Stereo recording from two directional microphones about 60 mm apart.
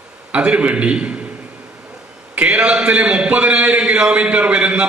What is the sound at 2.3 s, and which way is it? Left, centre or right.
A man's voice, right.